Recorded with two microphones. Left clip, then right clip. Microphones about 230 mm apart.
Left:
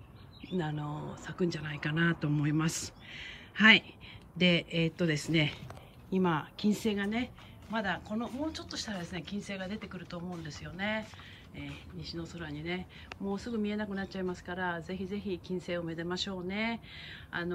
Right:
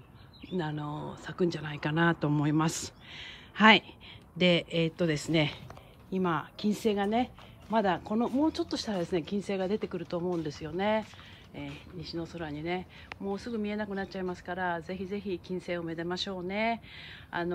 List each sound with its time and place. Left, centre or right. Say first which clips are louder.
0.6 s speech: right 2 dB; centre
11.5 s speech: right 4 dB; centre